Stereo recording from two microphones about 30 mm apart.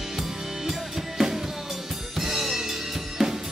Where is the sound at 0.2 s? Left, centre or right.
Centre.